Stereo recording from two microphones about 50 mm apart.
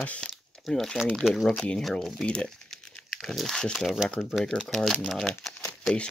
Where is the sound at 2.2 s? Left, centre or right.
Left.